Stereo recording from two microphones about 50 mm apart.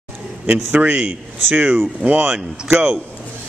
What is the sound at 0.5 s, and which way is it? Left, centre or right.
A man's voice, right.